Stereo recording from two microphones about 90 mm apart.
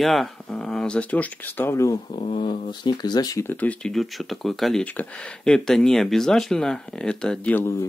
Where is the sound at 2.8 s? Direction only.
50° left (ahead or behind).